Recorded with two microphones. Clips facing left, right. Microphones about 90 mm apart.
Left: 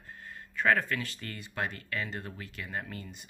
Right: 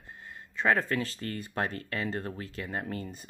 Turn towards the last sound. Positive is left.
turn(degrees=-35)  # may be behind; listen again after turning